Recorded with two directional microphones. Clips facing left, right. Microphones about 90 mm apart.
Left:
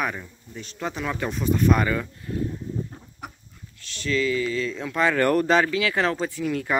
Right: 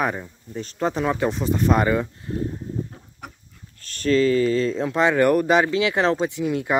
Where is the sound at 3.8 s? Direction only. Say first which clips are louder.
Right 6 dB; 45° right (ahead or behind); by 5.2 s 25° right (ahead or behind).